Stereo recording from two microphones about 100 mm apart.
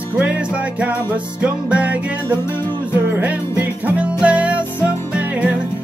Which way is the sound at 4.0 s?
15° right (ahead or behind).